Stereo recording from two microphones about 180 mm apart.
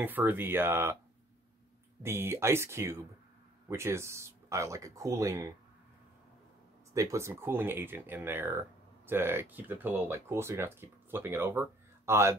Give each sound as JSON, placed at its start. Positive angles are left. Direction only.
{"t": 0.0, "sound": "speech", "side_deg": -10}
{"t": 2.0, "sound": "speech", "side_deg": -15}
{"t": 6.9, "sound": "speech", "side_deg": -15}